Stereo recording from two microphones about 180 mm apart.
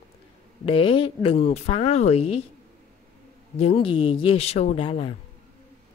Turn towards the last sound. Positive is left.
turn(degrees=30)  # may be behind; listen again after turning